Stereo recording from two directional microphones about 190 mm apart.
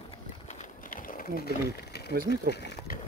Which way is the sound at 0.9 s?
50° left (ahead or behind).